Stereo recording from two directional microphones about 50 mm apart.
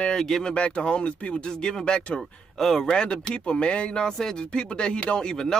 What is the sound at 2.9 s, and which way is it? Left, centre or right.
Speech, centre.